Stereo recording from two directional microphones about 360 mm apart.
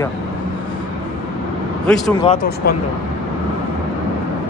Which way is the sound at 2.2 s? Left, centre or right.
Centre.